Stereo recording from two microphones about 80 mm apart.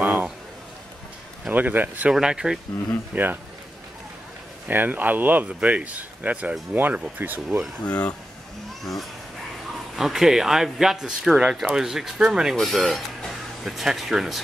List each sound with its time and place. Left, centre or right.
0.0 s a sound: right
1.5 s speech: right
2.1 s speech: centre
4.6 s speech: right
9.9 s speech: centre